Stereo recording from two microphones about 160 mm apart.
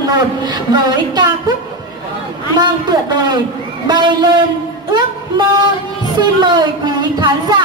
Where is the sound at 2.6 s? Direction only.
25° right (ahead or behind).